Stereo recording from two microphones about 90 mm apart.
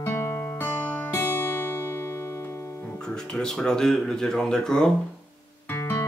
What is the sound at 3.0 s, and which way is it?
Speech, 10° left (ahead or behind).